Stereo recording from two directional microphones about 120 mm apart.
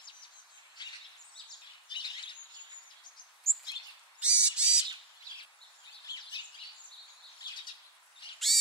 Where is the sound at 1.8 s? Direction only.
40° left (ahead or behind).